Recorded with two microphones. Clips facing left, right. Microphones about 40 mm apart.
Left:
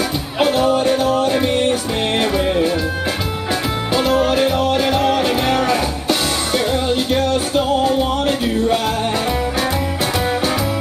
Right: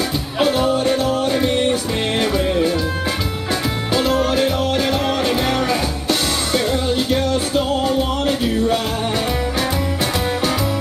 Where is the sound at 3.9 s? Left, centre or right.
Centre.